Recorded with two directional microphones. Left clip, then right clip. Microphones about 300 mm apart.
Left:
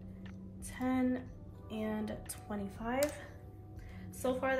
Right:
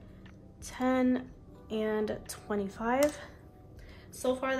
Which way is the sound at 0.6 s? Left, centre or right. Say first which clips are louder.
Right 6 dB; centre.